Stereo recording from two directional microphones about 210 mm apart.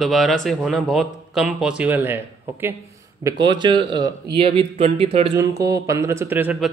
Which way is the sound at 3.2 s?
20° right (ahead or behind).